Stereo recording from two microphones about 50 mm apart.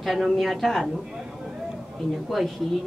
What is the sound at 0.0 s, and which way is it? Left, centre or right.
Speech, centre.